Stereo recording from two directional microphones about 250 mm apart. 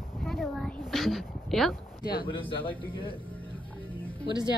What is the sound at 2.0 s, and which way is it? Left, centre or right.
Speech, left.